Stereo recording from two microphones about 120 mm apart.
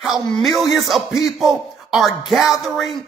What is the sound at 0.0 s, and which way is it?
Speech, centre (ahead or behind).